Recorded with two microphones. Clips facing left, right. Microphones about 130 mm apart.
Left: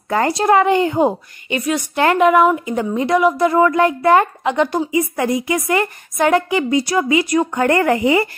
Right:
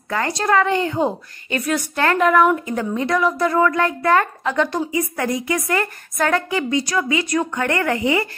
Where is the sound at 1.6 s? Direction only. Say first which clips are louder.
Left 3 dB; centre (ahead or behind); by 5.2 s 25° left (ahead or behind).